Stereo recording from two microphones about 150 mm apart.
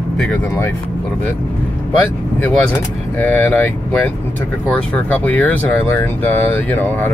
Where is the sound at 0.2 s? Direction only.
10° left (ahead or behind).